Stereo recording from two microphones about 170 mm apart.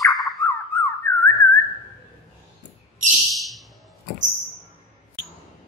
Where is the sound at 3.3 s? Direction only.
Centre (ahead or behind).